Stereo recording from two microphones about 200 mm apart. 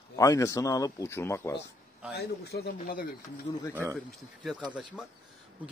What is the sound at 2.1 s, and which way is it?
A man's voice, 50° left (ahead or behind).